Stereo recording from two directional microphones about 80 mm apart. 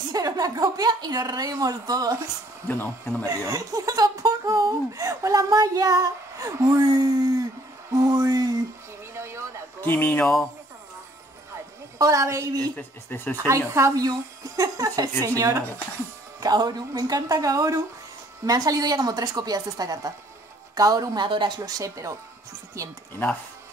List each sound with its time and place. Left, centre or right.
0.1 s speech: right
2.7 s speech: left
3.3 s speech: right
7.9 s a sound: right
9.1 s a sound: right
9.8 s speech: left
12.0 s speech: right
12.7 s speech: left
13.5 s speech: right
16.3 s speech: right
21.3 s a woman's voice: right
21.5 s speech: right